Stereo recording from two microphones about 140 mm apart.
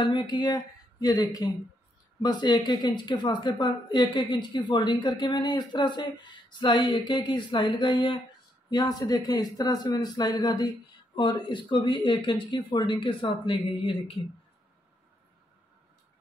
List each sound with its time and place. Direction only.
0.0 s a woman's voice: 35° left (ahead or behind)